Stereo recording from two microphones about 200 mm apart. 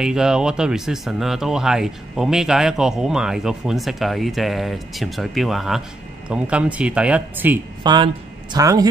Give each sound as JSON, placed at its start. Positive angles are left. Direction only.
{"t": 0.0, "sound": "speech", "side_deg": -5}
{"t": 7.8, "sound": "a woman's voice", "side_deg": -20}